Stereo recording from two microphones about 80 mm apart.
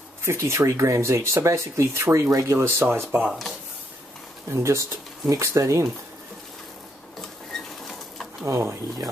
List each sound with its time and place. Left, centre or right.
0.2 s speech: right
3.3 s speech: centre
4.5 s speech: right
8.5 s speech: right